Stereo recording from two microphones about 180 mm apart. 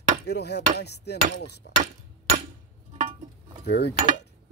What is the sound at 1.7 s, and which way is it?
Speech, 65° left (ahead or behind).